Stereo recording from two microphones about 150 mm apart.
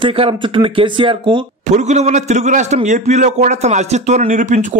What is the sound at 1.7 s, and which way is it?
A man's voice, 50° right (ahead or behind).